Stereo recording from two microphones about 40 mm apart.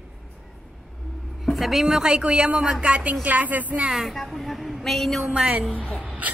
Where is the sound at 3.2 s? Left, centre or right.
Right.